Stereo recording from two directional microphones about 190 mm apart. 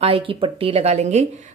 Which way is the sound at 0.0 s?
30° right (ahead or behind).